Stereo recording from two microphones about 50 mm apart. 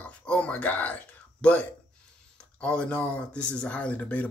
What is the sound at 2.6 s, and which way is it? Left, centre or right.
Speech, left.